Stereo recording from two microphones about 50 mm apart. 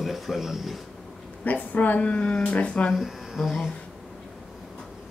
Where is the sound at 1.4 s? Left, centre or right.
Left.